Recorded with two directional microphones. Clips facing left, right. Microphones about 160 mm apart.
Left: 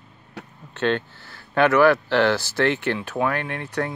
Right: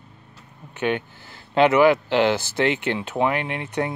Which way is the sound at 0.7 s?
15° right (ahead or behind).